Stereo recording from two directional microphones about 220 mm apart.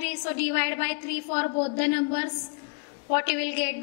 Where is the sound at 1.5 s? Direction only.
30° left (ahead or behind).